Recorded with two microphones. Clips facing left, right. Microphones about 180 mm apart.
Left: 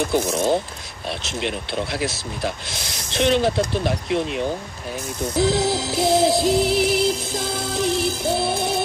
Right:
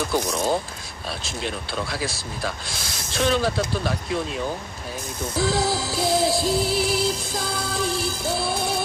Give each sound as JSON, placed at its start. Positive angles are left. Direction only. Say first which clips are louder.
{"t": 0.1, "sound": "music", "louder": "left 3 dB", "side_deg": 20}
{"t": 5.4, "sound": "music", "louder": "left 3 dB", "side_deg": 20}